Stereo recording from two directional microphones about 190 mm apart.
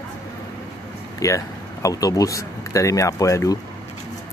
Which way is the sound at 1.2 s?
15° left (ahead or behind).